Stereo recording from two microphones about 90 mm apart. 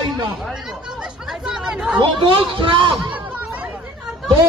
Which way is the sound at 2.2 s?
70° right (ahead or behind).